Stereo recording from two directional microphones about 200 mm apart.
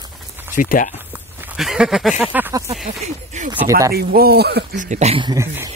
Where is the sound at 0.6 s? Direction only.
40° left (ahead or behind).